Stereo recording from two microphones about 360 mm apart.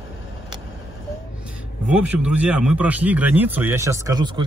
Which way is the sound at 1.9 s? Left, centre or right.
Centre.